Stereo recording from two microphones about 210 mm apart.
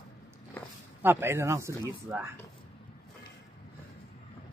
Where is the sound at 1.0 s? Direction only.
10° right (ahead or behind).